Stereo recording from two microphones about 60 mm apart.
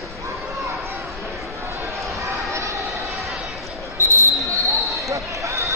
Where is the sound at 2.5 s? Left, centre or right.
Right.